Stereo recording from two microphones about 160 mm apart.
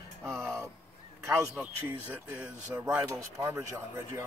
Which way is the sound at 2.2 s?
10° right (ahead or behind).